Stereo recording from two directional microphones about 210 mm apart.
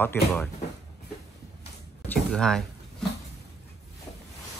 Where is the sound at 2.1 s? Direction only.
5° left (ahead or behind).